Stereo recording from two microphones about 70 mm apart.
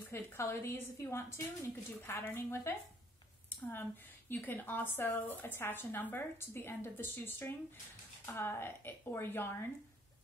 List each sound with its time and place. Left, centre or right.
0.1 s a woman's voice: left